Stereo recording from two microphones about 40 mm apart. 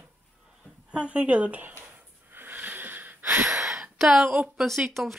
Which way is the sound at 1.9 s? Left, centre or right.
Right.